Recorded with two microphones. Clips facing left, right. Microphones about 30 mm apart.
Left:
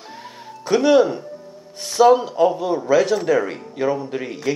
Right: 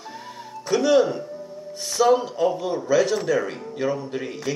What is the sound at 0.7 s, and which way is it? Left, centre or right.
Speech, centre.